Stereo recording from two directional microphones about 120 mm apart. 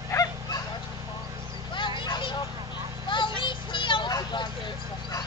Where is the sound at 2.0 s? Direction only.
40° left (ahead or behind).